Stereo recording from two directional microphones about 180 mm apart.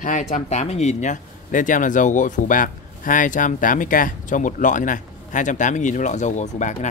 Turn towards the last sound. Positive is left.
turn(degrees=40)  # may be behind; listen again after turning